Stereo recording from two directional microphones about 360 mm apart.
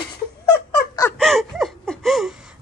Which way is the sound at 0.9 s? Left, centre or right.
Centre.